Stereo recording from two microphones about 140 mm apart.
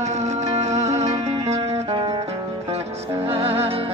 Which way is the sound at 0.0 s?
55° right (ahead or behind).